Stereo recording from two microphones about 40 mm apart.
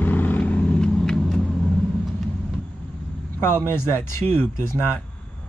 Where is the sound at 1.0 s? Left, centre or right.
Centre.